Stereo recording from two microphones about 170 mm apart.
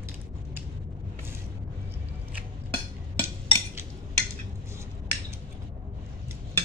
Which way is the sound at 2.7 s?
10° left (ahead or behind).